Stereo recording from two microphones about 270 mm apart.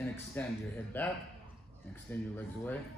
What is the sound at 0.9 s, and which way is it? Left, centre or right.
Speech, centre.